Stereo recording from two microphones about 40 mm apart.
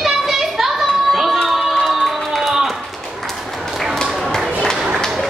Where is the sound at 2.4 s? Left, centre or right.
Centre.